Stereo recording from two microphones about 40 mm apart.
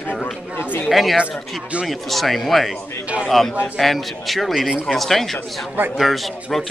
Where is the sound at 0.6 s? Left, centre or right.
Left.